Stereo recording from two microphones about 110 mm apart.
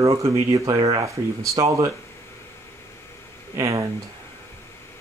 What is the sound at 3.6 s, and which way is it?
Speech, 30° right (ahead or behind).